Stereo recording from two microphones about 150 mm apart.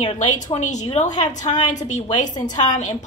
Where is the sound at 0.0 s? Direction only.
40° left (ahead or behind).